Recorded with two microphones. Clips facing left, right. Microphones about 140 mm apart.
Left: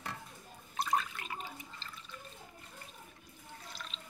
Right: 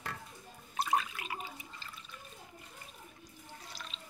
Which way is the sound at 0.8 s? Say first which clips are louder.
Right 1 dB; 5° right (ahead or behind).